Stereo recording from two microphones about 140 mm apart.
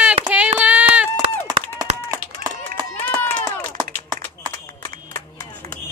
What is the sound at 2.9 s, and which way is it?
Run, 15° left (ahead or behind).